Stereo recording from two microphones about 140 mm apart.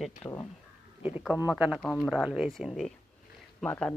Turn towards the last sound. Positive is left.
turn(degrees=10)  # may be behind; listen again after turning